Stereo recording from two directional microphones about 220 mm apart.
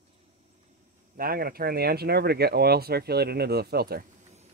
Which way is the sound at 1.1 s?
40° right (ahead or behind).